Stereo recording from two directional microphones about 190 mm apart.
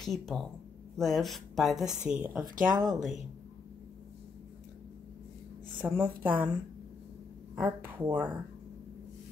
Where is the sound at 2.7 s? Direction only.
20° right (ahead or behind).